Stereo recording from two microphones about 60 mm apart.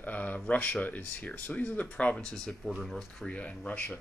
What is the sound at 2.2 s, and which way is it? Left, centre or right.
Speech, centre.